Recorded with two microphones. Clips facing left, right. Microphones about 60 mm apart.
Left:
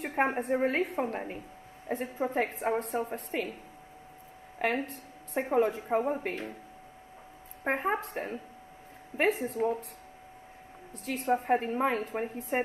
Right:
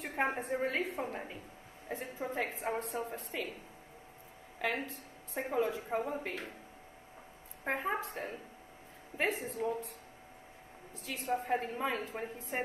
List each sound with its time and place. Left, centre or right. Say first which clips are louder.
0.1 s a woman's voice: left 5 dB; left
1.0 s a woman's voice: left 6 dB; left
4.6 s a woman's voice: left 5 dB; left
7.6 s a woman's voice: left 5 dB; left
11.1 s a woman's voice: left 6 dB; left